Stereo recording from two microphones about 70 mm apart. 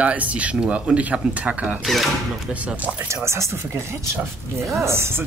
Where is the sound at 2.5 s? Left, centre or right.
Right.